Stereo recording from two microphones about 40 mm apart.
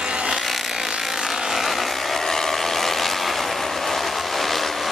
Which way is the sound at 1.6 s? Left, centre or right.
Centre.